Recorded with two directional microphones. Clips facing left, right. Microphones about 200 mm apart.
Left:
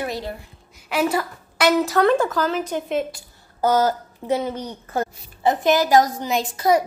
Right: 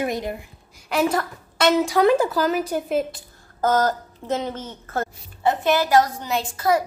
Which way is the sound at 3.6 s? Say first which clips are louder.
Left 1 dB; 10° left (ahead or behind).